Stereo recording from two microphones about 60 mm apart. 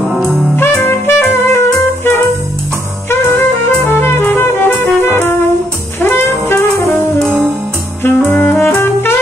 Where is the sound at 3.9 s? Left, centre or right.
Left.